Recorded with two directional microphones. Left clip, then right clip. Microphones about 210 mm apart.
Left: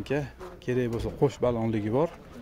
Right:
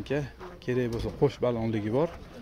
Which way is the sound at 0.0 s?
15° left (ahead or behind).